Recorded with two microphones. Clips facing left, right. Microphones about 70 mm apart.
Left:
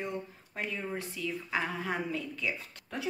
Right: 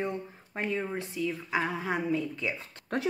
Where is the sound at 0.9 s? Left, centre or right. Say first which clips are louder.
Right 4 dB; centre.